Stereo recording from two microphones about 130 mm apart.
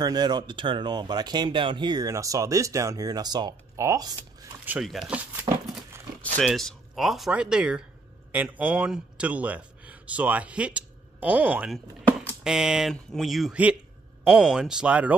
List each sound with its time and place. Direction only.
0.0 s speech: 30° right (ahead or behind)
4.8 s speech: 5° right (ahead or behind)
6.3 s a man's voice: centre (ahead or behind)